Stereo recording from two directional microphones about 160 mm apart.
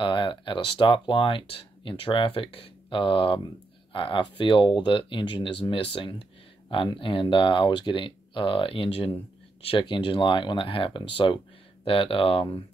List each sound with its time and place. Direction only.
0.0 s speech: 30° left (ahead or behind)